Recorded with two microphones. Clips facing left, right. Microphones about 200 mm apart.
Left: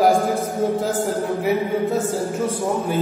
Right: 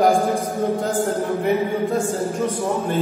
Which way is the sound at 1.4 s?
5° left (ahead or behind).